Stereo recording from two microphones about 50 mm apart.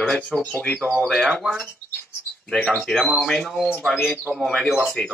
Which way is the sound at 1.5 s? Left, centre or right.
Centre.